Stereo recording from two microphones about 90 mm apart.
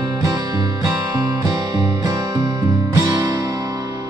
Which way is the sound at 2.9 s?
40° right (ahead or behind).